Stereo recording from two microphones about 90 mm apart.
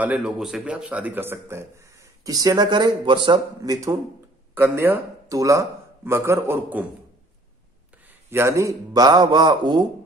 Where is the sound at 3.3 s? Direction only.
45° right (ahead or behind).